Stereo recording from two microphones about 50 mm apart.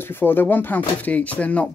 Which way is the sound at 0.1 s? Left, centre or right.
Left.